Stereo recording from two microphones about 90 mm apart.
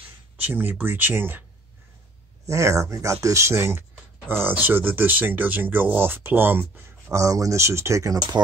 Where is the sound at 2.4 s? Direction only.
35° right (ahead or behind).